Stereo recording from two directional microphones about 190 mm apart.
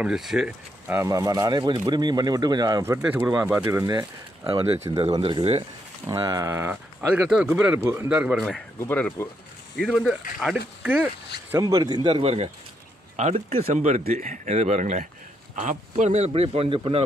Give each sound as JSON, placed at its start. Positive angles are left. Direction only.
{"t": 0.0, "sound": "speech", "side_deg": 0}
{"t": 0.9, "sound": "speech", "side_deg": -15}
{"t": 6.0, "sound": "speech", "side_deg": -20}
{"t": 8.5, "sound": "speech", "side_deg": 10}
{"t": 11.5, "sound": "speech", "side_deg": -20}